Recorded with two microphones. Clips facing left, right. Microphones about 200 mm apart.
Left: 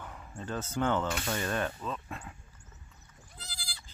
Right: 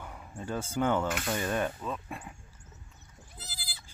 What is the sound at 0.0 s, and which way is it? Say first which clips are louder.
Speech: right 1 dB; 10° right (ahead or behind).